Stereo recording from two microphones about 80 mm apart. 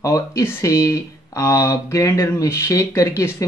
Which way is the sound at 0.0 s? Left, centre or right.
Left.